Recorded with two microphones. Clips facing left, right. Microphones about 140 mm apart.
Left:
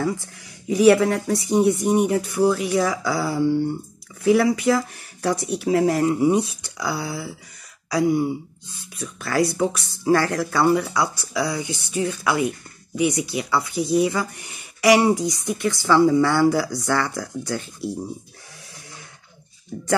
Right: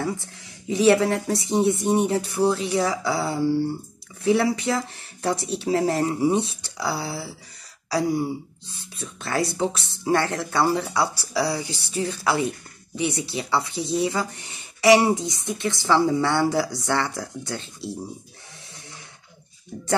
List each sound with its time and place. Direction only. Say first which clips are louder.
0.7 s a woman's voice: left 3 dB; 25° right (ahead or behind)